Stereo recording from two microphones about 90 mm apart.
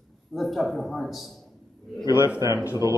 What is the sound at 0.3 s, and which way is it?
Speech, centre (ahead or behind).